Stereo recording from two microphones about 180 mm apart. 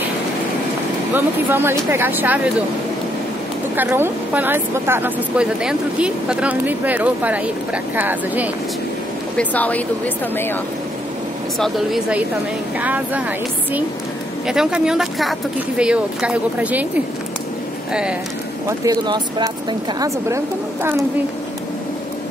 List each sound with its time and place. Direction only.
1.1 s a woman's voice: 10° right (ahead or behind)
3.7 s a woman's voice: 10° right (ahead or behind)
9.4 s speech: 10° left (ahead or behind)
11.6 s a woman's voice: centre (ahead or behind)
14.5 s speech: 5° right (ahead or behind)
18.7 s a woman's voice: 20° right (ahead or behind)